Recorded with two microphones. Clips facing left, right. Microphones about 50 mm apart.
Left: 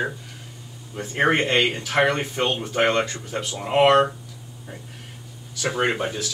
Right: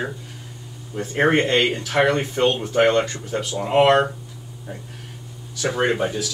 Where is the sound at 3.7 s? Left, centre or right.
Centre.